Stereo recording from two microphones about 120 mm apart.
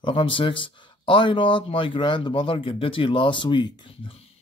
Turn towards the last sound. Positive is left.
turn(degrees=40)  # may be behind; listen again after turning